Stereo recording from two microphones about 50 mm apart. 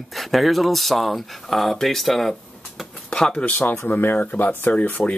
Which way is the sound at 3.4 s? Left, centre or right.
Left.